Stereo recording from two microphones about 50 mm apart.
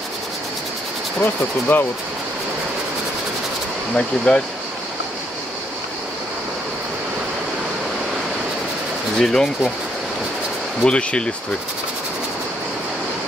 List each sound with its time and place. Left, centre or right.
1.2 s speech: left
3.9 s speech: centre
9.2 s speech: centre
10.8 s speech: left